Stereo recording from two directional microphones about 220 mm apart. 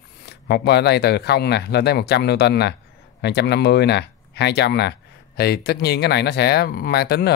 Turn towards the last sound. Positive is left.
turn(degrees=45)  # may be behind; listen again after turning